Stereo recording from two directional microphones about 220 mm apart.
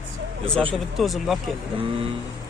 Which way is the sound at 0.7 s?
Centre (ahead or behind).